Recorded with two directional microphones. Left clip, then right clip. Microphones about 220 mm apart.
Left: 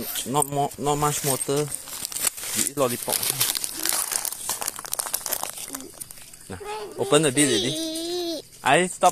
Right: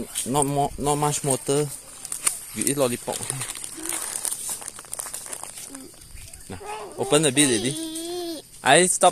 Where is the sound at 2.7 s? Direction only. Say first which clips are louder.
Right 1 dB; 20° right (ahead or behind).